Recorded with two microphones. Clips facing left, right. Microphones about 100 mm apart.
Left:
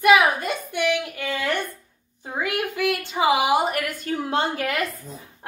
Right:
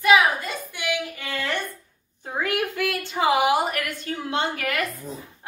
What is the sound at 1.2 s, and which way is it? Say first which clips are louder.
A woman's voice: left 3 dB; 15° left (ahead or behind).